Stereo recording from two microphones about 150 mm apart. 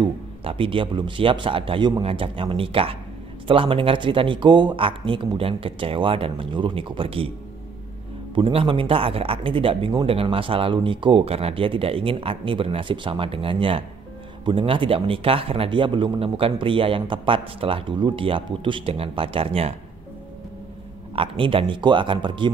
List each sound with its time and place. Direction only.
0.0 s speech: 35° right (ahead or behind)
8.4 s speech: 35° right (ahead or behind)
21.1 s speech: 35° right (ahead or behind)